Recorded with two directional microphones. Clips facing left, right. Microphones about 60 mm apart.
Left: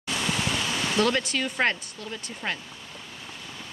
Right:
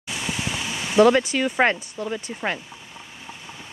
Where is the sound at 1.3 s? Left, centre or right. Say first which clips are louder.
Right 5 dB; right.